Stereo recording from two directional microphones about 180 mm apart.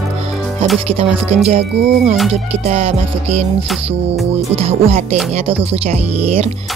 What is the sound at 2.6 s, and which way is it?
Speech, 35° right (ahead or behind).